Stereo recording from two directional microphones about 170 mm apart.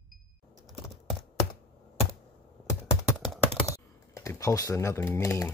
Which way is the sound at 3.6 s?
20° left (ahead or behind).